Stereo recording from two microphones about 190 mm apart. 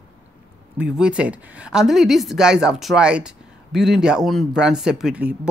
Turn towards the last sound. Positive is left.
turn(degrees=-5)  # may be behind; listen again after turning